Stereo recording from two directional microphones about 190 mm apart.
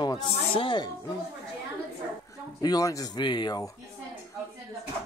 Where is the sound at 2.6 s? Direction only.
20° left (ahead or behind).